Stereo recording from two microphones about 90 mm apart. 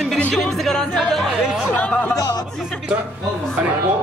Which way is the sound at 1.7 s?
20° left (ahead or behind).